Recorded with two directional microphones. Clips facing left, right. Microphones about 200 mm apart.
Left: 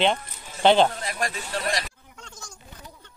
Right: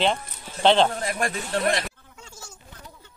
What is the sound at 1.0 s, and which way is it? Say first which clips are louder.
Speech: right 3 dB; 55° right (ahead or behind).